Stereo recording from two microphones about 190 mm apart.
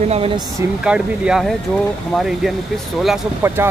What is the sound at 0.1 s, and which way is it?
Speech, 30° right (ahead or behind).